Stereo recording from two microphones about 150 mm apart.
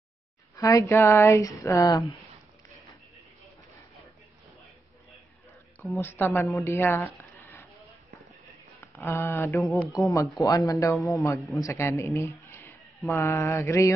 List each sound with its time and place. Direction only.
0.6 s speech: 20° left (ahead or behind)
5.9 s speech: 15° left (ahead or behind)
8.8 s speech: 15° left (ahead or behind)